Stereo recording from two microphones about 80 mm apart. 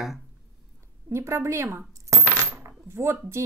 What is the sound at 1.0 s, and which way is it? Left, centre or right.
Speech, right.